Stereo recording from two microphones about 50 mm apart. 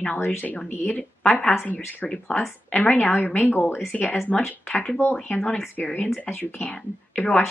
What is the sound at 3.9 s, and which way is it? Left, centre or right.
Speech, centre.